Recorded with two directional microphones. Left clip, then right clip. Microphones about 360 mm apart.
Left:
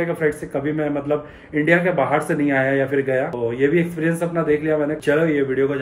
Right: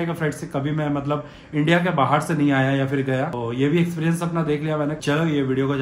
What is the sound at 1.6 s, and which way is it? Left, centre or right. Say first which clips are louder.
Speech: left 2 dB; centre.